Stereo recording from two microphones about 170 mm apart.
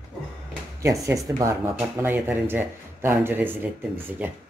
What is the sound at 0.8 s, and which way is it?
Speech, 15° right (ahead or behind).